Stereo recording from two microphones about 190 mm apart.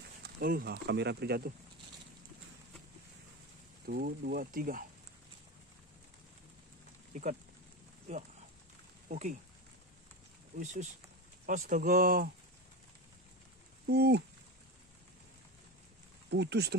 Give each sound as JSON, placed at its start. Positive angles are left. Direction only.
{"t": 0.2, "sound": "speech", "side_deg": -50}
{"t": 3.8, "sound": "speech", "side_deg": -55}
{"t": 7.1, "sound": "speech", "side_deg": -40}
{"t": 9.1, "sound": "speech", "side_deg": -40}
{"t": 10.6, "sound": "speech", "side_deg": -40}
{"t": 13.8, "sound": "speech", "side_deg": -60}
{"t": 16.3, "sound": "speech", "side_deg": -60}